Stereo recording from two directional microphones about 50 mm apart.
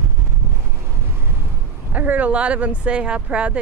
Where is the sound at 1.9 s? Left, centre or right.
Right.